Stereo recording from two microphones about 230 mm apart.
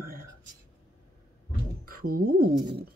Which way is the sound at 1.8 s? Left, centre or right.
Right.